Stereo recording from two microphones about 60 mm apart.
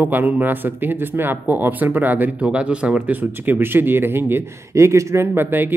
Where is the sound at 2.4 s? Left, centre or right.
Centre; by 4.4 s right.